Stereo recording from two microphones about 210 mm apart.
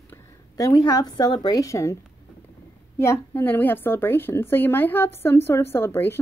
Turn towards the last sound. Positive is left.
turn(degrees=10)  # may be behind; listen again after turning